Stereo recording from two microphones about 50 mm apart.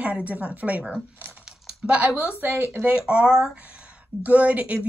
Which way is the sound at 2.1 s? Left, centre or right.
Right.